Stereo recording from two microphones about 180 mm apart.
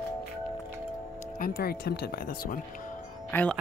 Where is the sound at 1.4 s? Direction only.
55° left (ahead or behind).